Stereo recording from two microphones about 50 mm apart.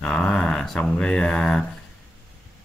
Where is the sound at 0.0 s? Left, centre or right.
Left.